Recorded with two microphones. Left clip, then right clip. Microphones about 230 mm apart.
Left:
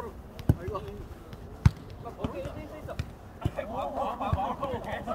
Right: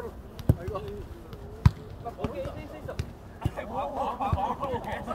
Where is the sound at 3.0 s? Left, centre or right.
Right.